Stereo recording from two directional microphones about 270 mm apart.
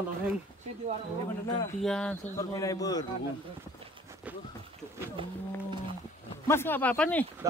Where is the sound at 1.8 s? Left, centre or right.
Centre.